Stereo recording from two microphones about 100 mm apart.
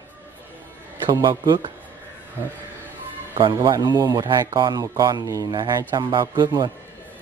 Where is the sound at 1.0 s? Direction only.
50° right (ahead or behind).